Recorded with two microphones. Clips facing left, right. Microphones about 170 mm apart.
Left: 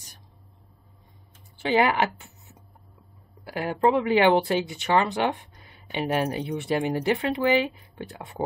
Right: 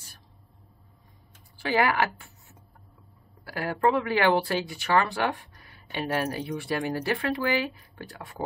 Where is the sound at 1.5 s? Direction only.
20° left (ahead or behind).